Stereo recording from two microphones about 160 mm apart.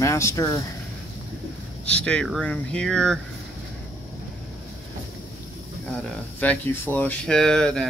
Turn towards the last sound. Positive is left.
turn(degrees=5)  # may be behind; listen again after turning